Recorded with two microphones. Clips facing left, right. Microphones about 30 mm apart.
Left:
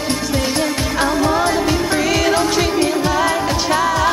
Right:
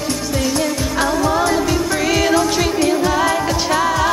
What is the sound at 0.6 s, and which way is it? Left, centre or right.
Music of asia, centre.